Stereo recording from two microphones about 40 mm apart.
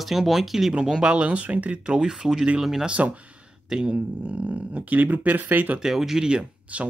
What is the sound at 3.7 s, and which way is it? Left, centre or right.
Speech, centre.